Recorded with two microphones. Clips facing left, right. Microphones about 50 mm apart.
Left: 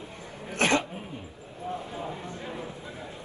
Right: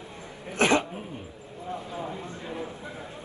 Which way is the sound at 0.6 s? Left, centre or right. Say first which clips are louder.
Right 2 dB; right.